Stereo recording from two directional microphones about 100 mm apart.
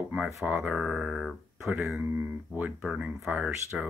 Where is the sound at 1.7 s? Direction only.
15° right (ahead or behind).